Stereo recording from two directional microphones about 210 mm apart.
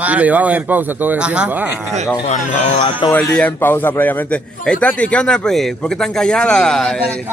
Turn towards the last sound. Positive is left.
turn(degrees=5)  # may be behind; listen again after turning